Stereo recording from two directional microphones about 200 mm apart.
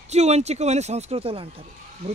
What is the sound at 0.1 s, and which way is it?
Speech, 35° right (ahead or behind).